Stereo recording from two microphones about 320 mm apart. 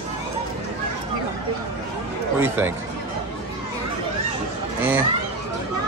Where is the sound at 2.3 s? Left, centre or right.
Centre.